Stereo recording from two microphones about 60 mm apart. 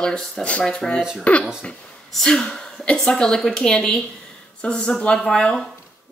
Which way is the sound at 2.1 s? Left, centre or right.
Centre.